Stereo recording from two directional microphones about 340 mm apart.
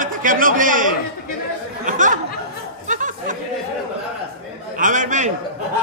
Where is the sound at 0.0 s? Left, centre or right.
Right.